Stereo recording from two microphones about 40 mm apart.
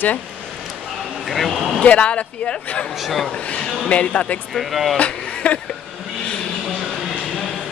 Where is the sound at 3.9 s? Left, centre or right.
Left.